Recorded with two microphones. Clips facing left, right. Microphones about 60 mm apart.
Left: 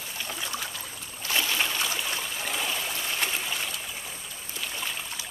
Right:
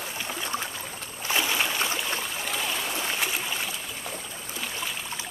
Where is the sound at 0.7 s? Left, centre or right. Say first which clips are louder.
Right 3 dB; centre.